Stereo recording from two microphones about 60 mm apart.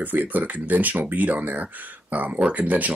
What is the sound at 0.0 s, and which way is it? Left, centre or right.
Speech, right.